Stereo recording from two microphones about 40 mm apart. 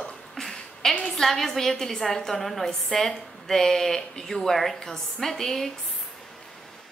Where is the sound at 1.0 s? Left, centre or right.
Centre.